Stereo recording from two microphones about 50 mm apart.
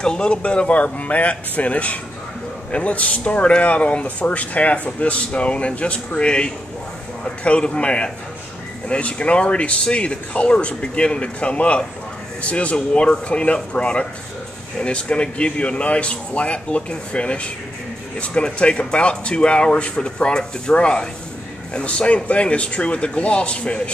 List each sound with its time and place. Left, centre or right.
0.0 s speech: centre